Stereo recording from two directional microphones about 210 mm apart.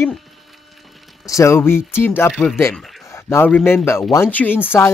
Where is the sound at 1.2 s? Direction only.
15° left (ahead or behind).